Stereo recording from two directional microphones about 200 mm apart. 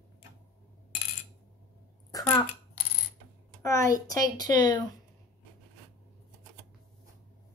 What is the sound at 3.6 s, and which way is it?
Speech, 15° left (ahead or behind).